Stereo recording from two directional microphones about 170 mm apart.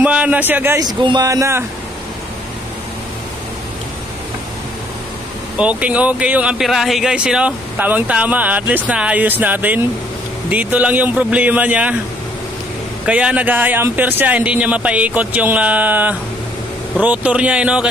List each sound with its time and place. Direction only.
0.0 s speech: 10° right (ahead or behind)
0.8 s speech: 25° right (ahead or behind)
5.6 s speech: 5° right (ahead or behind)
13.0 s speech: 5° right (ahead or behind)